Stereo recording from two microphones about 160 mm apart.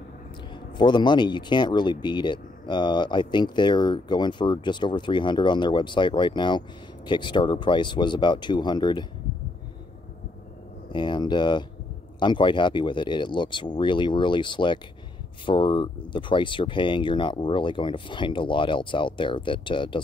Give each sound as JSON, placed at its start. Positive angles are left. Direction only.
{"t": 0.5, "sound": "speech", "side_deg": 30}
{"t": 10.9, "sound": "speech", "side_deg": 30}